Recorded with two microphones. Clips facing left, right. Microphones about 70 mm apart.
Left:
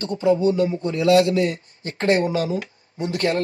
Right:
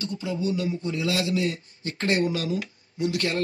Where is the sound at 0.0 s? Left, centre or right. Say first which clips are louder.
Left 10 dB; left.